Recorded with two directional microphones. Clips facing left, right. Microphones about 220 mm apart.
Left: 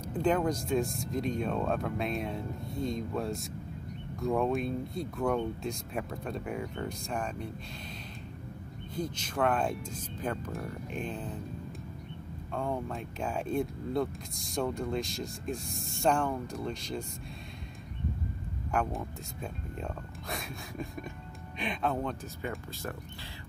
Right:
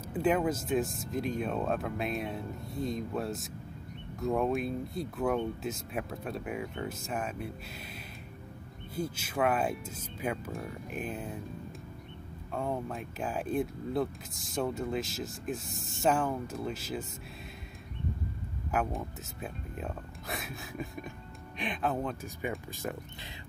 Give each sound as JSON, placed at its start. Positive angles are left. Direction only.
{"t": 0.0, "sound": "speech", "side_deg": -5}
{"t": 8.9, "sound": "speech", "side_deg": -5}
{"t": 12.5, "sound": "speech", "side_deg": -5}
{"t": 18.7, "sound": "speech", "side_deg": 0}
{"t": 22.4, "sound": "speech", "side_deg": -15}